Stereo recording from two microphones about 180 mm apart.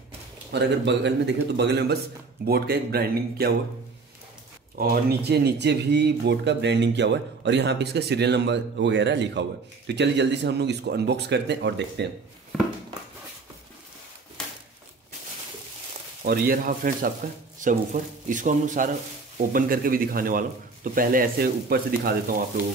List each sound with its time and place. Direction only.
0.5 s speech: 70° right (ahead or behind)
4.8 s speech: 55° right (ahead or behind)
5.3 s speech: 70° right (ahead or behind)
16.3 s speech: 55° right (ahead or behind)